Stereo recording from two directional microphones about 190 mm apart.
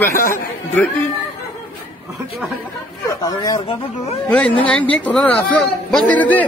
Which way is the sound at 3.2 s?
20° left (ahead or behind).